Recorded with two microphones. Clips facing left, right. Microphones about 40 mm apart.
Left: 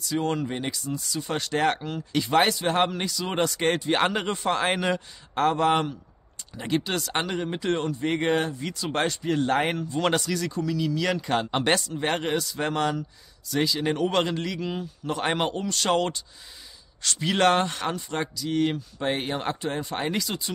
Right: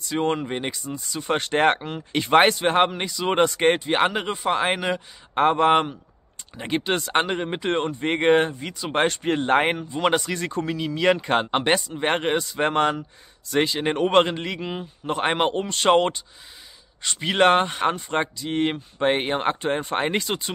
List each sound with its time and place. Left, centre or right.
0.0 s speech: right
2.8 s speech: right
5.3 s speech: right
9.0 s speech: right
9.4 s speech: right
9.8 s speech: centre
10.2 s speech: right
11.6 s speech: centre; by 20.5 s right